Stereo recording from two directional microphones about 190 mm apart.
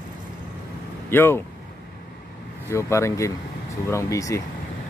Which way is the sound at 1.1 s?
10° left (ahead or behind).